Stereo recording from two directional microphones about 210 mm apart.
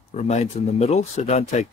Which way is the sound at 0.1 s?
35° left (ahead or behind).